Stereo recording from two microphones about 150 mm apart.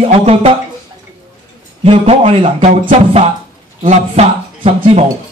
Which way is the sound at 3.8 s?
45° right (ahead or behind).